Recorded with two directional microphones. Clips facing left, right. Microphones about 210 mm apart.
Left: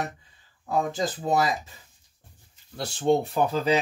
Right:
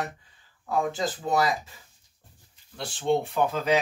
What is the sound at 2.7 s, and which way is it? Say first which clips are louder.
Speech: left 3 dB; 40° left (ahead or behind).